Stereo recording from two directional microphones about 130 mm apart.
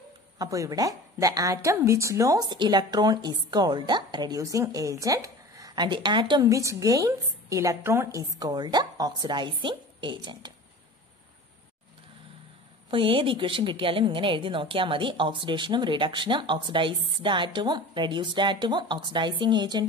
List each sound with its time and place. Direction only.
0.4 s a woman's voice: 25° right (ahead or behind)
12.9 s a woman's voice: 40° right (ahead or behind)